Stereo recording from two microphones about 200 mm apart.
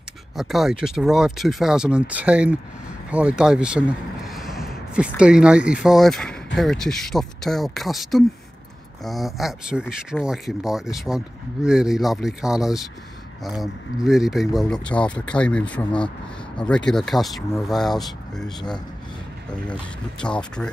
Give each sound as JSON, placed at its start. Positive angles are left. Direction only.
{"t": 0.4, "sound": "speech", "side_deg": 0}
{"t": 19.7, "sound": "speech", "side_deg": 5}